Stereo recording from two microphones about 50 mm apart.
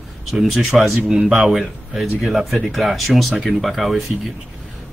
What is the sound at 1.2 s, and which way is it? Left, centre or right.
Speech, centre.